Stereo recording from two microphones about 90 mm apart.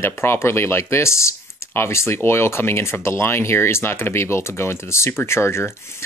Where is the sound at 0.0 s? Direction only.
25° left (ahead or behind).